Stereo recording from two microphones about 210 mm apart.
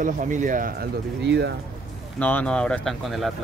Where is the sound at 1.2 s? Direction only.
55° right (ahead or behind).